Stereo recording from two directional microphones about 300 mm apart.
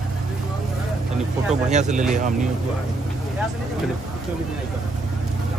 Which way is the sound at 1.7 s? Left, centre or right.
Right.